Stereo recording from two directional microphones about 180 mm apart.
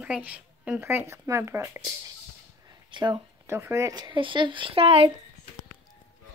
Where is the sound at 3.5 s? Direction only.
15° right (ahead or behind); by 5.1 s 30° right (ahead or behind).